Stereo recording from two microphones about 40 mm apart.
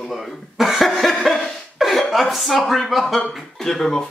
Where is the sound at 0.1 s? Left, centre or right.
Centre.